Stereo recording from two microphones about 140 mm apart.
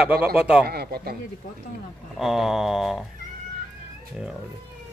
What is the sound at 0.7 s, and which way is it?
Speech, 90° right.